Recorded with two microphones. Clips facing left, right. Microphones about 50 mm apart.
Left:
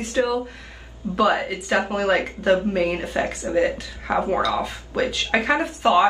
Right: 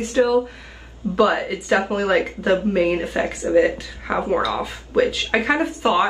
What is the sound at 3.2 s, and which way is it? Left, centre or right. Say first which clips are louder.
Speech: right 5 dB; right.